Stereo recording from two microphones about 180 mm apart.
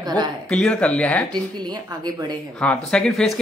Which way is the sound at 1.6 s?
20° right (ahead or behind).